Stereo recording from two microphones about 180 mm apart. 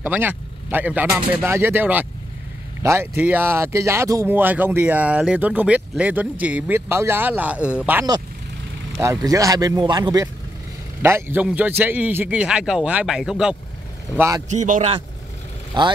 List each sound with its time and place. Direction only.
0.0 s speech: 10° right (ahead or behind)
9.0 s speech: 20° right (ahead or behind)
14.1 s speech: 15° right (ahead or behind)
14.5 s a man's voice: 40° right (ahead or behind)
15.8 s speech: 25° right (ahead or behind)